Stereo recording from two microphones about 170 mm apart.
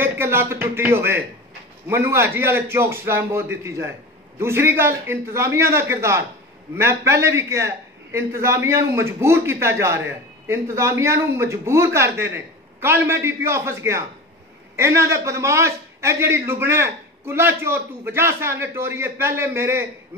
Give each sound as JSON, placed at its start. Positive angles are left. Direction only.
{"t": 0.0, "sound": "a man's voice", "side_deg": -15}